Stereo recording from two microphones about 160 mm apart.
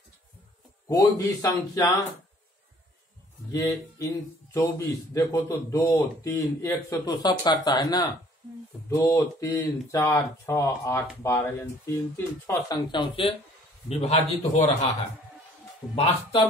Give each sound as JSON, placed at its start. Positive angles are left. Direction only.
{"t": 0.8, "sound": "a man's voice", "side_deg": 20}
{"t": 3.5, "sound": "a man's voice", "side_deg": 20}
{"t": 15.9, "sound": "speech", "side_deg": 30}